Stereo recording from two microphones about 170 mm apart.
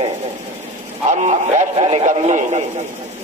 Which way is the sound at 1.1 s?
40° right (ahead or behind).